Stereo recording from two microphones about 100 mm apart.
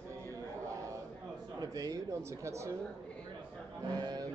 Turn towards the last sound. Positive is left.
turn(degrees=-45)  # may be behind; listen again after turning